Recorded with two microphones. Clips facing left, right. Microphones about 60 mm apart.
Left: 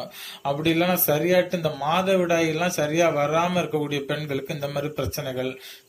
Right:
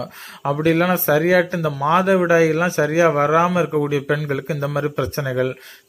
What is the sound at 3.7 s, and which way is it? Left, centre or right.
Speech, right.